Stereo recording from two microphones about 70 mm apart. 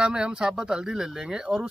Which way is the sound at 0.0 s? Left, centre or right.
Centre.